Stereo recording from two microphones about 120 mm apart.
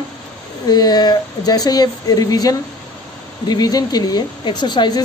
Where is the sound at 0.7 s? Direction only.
35° left (ahead or behind).